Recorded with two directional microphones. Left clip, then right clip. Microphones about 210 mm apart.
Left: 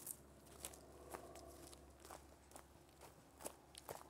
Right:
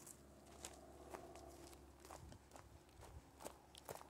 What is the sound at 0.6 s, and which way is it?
Biting, 15° left (ahead or behind).